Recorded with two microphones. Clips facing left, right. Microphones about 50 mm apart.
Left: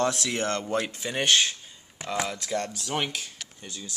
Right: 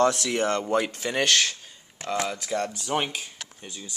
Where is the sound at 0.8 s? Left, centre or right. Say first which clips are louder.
Right 1 dB; right.